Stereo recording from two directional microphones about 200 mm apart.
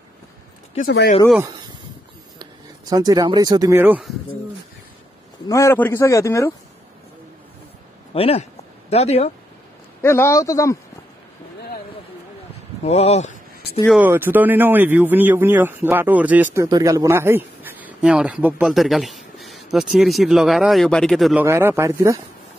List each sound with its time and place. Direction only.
0.7 s speech: 50° left (ahead or behind)
2.3 s speech: 20° right (ahead or behind)
5.5 s a man's voice: 15° left (ahead or behind)
8.1 s speech: 30° left (ahead or behind)
10.0 s a man's voice: 15° left (ahead or behind)
12.8 s speech: 35° left (ahead or behind)
13.9 s speech: 10° right (ahead or behind)